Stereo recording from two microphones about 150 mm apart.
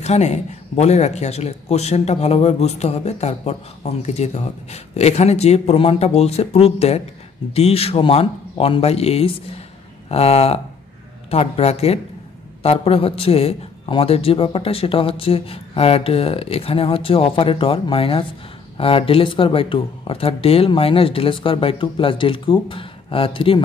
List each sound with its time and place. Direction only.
0.0 s a man's voice: 50° left (ahead or behind)